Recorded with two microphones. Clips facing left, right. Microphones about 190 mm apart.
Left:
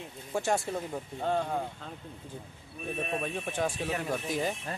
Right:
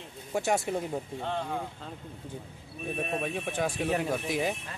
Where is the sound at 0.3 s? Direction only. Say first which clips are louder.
Right 2 dB; 10° right (ahead or behind).